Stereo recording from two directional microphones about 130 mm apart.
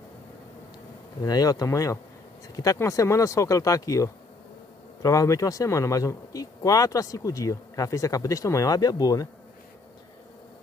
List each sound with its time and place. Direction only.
1.2 s speech: 30° left (ahead or behind)